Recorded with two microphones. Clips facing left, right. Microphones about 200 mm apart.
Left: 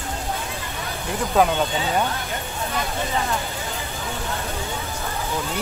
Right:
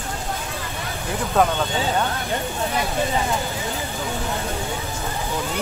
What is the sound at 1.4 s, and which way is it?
Speech, centre (ahead or behind).